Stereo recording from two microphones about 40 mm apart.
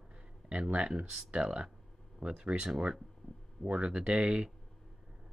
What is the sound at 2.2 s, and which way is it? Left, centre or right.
Speech, right.